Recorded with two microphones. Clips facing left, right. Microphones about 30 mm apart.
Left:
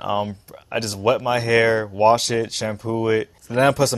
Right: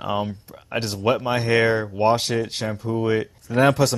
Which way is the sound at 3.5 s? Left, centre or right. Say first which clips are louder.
Even; left.